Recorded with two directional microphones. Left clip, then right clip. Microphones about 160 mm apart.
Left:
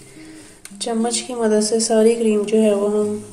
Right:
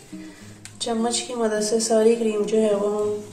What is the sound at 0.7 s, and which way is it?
Music, 35° left (ahead or behind).